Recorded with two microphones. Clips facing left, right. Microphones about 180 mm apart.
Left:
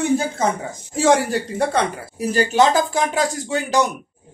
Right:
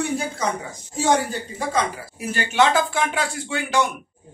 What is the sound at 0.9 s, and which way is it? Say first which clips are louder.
Speech: left 4 dB; 90° left.